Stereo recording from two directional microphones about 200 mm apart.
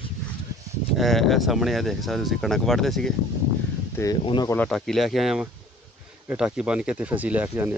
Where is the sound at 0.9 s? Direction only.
Centre (ahead or behind).